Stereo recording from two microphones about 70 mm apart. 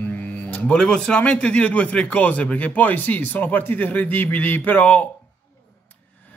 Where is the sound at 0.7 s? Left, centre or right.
Centre.